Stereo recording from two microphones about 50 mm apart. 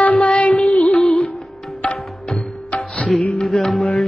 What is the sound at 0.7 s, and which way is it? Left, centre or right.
Music of bollywood, left.